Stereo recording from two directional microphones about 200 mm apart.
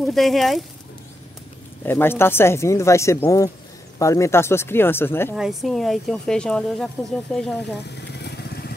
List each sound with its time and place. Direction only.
0.0 s speech: centre (ahead or behind)
1.9 s speech: 10° left (ahead or behind)
5.3 s speech: centre (ahead or behind)
8.1 s vehicle: 55° left (ahead or behind)